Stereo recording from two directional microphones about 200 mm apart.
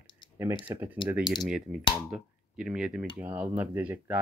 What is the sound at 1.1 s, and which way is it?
Speech, centre (ahead or behind).